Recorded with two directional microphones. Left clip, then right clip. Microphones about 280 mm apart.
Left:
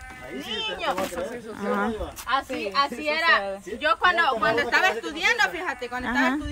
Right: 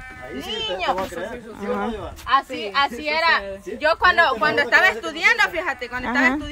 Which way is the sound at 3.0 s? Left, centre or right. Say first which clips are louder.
Right 2 dB; centre.